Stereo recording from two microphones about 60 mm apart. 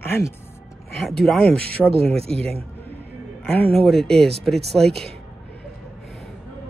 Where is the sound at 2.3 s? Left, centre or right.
Centre.